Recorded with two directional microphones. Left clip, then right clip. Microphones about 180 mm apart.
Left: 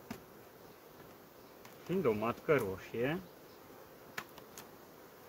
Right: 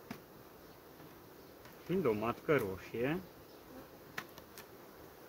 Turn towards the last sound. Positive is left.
turn(degrees=10)  # may be behind; listen again after turning